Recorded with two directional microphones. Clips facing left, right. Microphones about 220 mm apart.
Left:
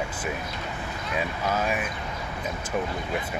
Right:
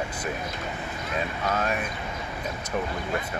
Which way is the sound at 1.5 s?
5° left (ahead or behind).